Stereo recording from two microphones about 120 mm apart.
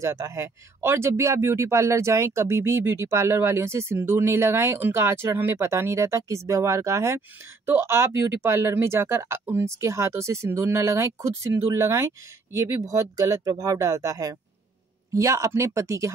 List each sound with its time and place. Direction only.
0.0 s speech: 25° right (ahead or behind)